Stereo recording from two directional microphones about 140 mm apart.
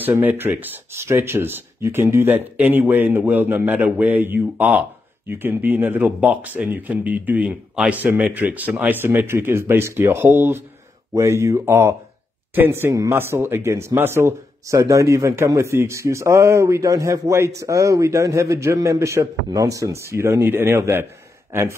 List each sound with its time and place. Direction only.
0.0 s speech: 15° right (ahead or behind)